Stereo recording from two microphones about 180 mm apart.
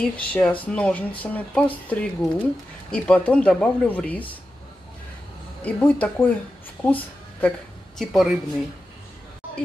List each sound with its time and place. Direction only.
0.0 s speech: 5° left (ahead or behind)
5.6 s speech: 5° left (ahead or behind)